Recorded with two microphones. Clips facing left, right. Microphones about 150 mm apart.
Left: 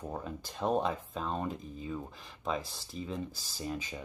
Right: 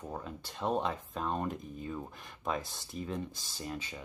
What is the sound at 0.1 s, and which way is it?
Speech, 10° left (ahead or behind).